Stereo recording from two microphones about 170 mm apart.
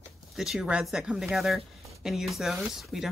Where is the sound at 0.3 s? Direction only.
Centre (ahead or behind).